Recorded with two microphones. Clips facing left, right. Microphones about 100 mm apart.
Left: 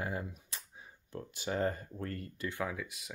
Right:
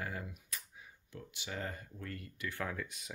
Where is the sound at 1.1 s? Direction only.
40° left (ahead or behind).